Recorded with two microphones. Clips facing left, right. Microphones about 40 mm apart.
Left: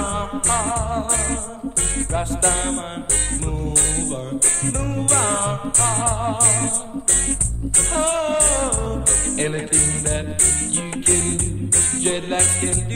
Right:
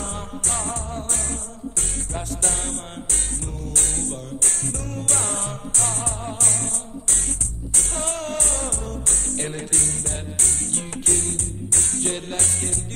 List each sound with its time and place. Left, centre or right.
0.0 s music: left
5.1 s music: left
7.9 s music: left